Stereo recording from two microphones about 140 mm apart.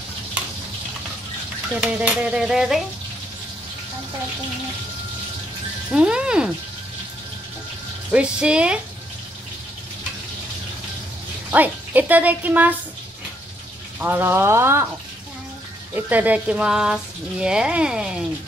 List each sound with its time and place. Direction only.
1.8 s speech: 5° right (ahead or behind)
5.9 s speech: 5° right (ahead or behind)
8.1 s speech: 5° right (ahead or behind)
11.5 s speech: 10° right (ahead or behind)
13.9 s speech: 10° right (ahead or behind)
15.9 s speech: 10° right (ahead or behind)